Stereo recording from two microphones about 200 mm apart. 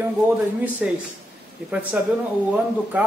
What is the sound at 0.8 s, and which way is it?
Speech, 5° right (ahead or behind).